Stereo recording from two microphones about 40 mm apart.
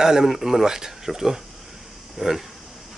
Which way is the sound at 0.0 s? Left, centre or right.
Centre.